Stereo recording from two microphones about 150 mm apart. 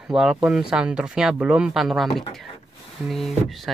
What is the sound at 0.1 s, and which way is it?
Speech, 5° right (ahead or behind).